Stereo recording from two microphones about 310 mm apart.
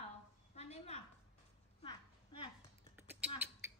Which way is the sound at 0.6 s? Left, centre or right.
Centre.